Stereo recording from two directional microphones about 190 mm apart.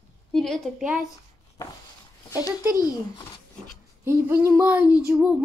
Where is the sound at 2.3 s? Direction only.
20° left (ahead or behind).